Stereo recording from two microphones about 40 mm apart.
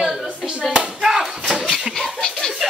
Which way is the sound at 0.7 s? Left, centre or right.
Centre.